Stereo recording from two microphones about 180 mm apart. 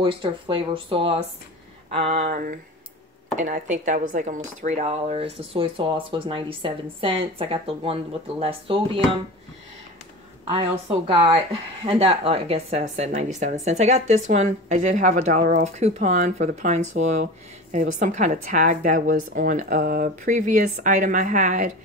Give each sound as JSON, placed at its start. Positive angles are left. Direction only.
{"t": 0.0, "sound": "speech", "side_deg": -25}
{"t": 3.3, "sound": "speech", "side_deg": -45}
{"t": 10.4, "sound": "speech", "side_deg": -35}